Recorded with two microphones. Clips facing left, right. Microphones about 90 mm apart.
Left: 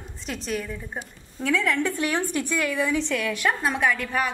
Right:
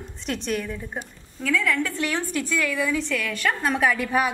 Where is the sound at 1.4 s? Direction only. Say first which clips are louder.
Even; 25° left (ahead or behind).